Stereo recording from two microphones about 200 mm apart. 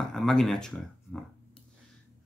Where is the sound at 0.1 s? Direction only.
Centre (ahead or behind).